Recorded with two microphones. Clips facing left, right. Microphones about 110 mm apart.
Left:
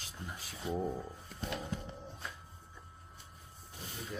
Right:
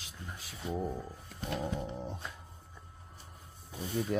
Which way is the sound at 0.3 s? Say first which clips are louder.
Even; centre (ahead or behind).